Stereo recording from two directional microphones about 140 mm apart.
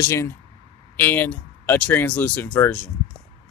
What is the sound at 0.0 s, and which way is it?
Speech, 20° left (ahead or behind).